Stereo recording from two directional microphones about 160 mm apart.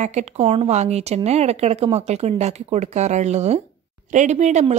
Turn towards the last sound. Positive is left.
turn(degrees=-50)  # may be behind; listen again after turning